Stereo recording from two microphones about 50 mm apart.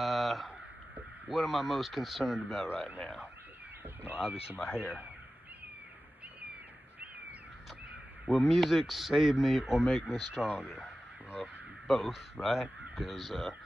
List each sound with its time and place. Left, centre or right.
0.0 s a sound: centre
1.2 s speech: centre
4.0 s speech: right
8.3 s speech: centre